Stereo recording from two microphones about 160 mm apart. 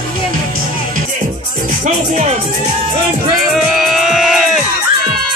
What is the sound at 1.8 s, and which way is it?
Speech, 45° right (ahead or behind).